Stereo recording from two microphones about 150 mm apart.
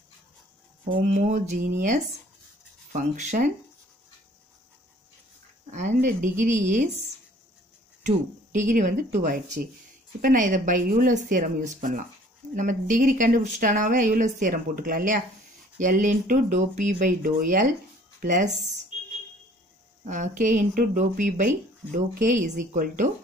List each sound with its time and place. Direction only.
0.9 s speech: 55° right (ahead or behind)
5.7 s speech: 55° right (ahead or behind)
8.5 s speech: 60° right (ahead or behind)
18.2 s speech: 55° right (ahead or behind)
20.1 s speech: 55° right (ahead or behind)